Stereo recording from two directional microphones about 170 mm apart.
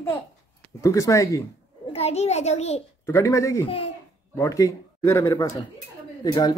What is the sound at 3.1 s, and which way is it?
Speech, 15° left (ahead or behind).